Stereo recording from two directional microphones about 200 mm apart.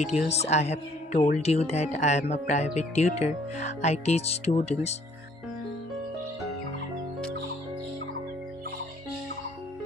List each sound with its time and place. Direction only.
0.3 s speech: 35° left (ahead or behind)